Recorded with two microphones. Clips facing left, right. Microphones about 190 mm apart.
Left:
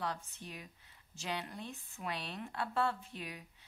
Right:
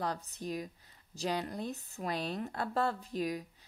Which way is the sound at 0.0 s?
40° right (ahead or behind).